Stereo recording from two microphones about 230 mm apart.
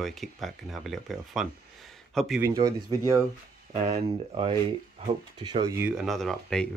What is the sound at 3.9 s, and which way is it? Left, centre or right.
Speech, right.